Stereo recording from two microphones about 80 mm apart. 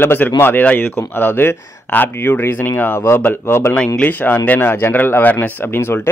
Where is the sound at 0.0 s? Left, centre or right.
Left.